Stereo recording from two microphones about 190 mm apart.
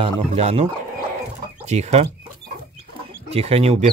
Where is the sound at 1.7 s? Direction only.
35° right (ahead or behind).